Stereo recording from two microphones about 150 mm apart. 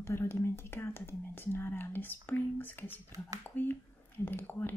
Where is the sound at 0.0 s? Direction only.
15° left (ahead or behind).